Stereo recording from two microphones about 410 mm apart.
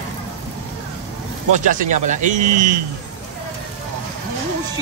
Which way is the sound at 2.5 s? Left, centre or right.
Right.